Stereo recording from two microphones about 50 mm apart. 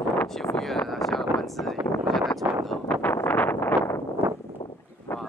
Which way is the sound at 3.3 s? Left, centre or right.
Left.